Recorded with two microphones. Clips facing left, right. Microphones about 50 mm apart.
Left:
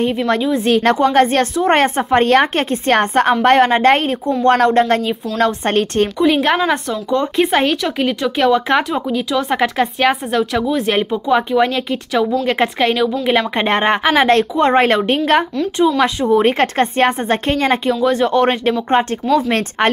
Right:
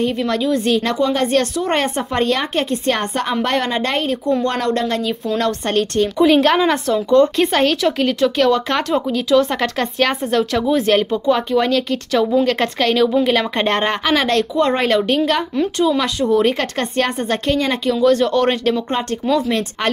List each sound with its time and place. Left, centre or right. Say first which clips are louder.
0.7 s a woman's voice: left 4 dB; left
6.1 s speech: right 3 dB; centre
8.4 s speech: left 2 dB; centre
12.4 s speech: left 2 dB; centre
19.3 s speech: left 2 dB; centre